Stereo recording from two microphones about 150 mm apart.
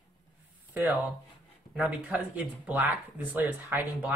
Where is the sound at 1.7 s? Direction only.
5° right (ahead or behind).